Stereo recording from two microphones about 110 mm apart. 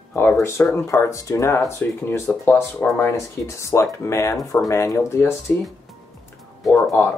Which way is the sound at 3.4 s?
25° left (ahead or behind).